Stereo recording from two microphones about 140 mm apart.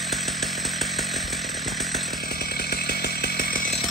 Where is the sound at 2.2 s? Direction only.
90° left.